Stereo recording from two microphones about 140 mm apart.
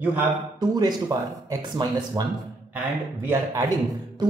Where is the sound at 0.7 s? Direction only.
25° right (ahead or behind).